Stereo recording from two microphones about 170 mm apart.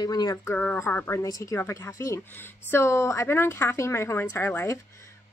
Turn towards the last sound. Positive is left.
turn(degrees=15)  # may be behind; listen again after turning